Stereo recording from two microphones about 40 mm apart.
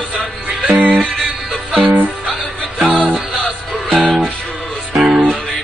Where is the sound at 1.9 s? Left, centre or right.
Right.